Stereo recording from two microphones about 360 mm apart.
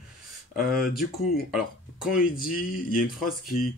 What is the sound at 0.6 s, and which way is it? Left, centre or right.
Speech, centre.